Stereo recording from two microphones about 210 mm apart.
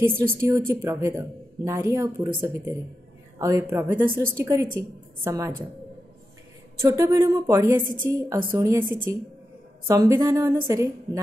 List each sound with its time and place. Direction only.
0.4 s speech: 10° right (ahead or behind)
6.8 s speech: 15° right (ahead or behind)